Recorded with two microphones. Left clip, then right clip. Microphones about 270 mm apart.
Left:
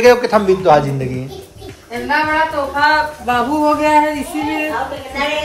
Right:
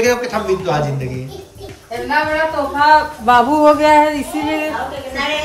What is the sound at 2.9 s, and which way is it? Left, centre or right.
Speech, right.